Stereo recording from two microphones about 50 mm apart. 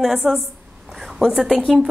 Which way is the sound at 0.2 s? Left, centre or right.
Centre.